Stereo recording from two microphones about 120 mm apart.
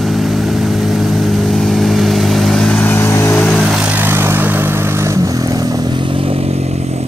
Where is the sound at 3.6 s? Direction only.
10° right (ahead or behind); by 7.0 s 60° right (ahead or behind).